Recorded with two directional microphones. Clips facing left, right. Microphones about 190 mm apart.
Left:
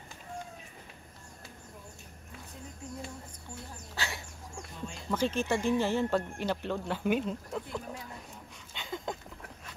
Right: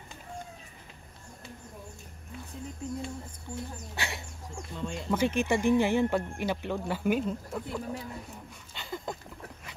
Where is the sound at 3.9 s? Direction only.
20° right (ahead or behind); by 7.8 s 5° right (ahead or behind).